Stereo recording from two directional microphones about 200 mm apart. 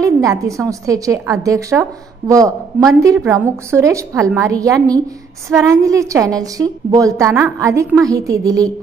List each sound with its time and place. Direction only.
0.0 s a woman's voice: 15° right (ahead or behind)